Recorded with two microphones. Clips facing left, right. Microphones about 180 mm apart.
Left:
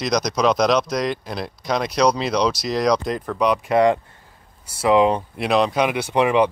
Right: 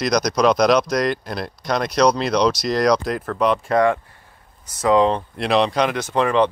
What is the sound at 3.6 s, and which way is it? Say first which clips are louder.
Speech: left 1 dB; 20° left (ahead or behind).